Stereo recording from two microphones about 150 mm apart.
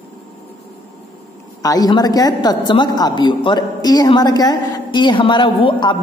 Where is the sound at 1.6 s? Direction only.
25° left (ahead or behind).